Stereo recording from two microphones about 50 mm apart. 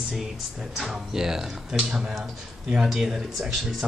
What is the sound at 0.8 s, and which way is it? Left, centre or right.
Speech, centre.